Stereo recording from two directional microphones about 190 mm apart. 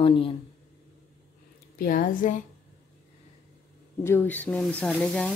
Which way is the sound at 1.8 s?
45° left (ahead or behind).